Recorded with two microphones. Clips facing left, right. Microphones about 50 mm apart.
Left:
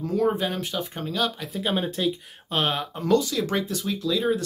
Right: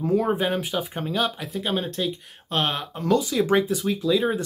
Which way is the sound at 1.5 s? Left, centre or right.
Centre.